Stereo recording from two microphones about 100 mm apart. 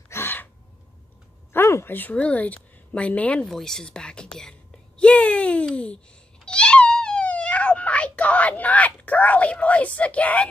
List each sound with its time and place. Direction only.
0.1 s gasp: 20° left (ahead or behind)
1.5 s a woman's voice: 25° left (ahead or behind); by 5.9 s 10° left (ahead or behind)
6.4 s cat: 10° left (ahead or behind)